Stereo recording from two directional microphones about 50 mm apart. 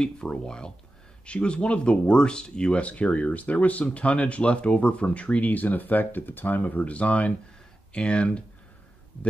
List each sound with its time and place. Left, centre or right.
0.0 s speech: centre